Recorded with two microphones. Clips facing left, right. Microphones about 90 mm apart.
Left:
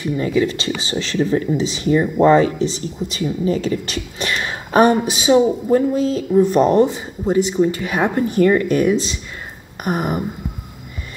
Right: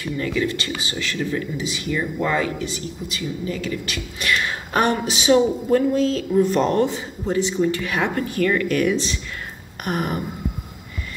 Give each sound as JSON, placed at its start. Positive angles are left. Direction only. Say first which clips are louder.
{"t": 0.0, "sound": "speech", "louder": "left 5 dB", "side_deg": 25}